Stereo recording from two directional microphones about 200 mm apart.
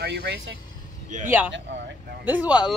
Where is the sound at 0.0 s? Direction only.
55° right (ahead or behind).